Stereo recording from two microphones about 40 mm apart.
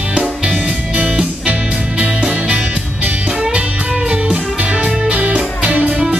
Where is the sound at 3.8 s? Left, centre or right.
Centre.